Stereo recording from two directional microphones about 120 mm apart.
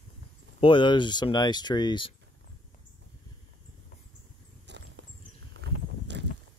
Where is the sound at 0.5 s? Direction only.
45° left (ahead or behind).